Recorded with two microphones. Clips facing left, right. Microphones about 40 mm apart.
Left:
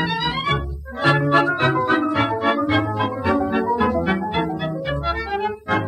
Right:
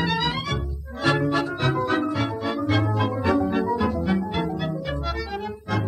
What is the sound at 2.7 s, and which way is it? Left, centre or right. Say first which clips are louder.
Music: left 3 dB; left.